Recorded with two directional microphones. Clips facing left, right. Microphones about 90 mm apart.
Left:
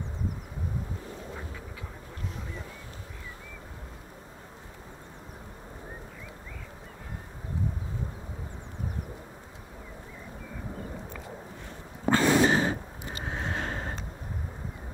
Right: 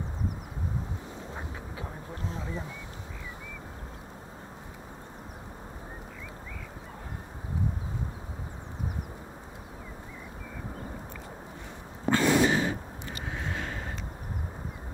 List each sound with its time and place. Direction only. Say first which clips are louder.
1.3 s duck: right 1 dB; 30° right (ahead or behind)
12.1 s gasp: left 1 dB; 40° left (ahead or behind)